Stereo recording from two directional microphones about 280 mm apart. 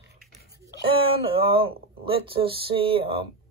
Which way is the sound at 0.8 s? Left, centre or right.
Centre.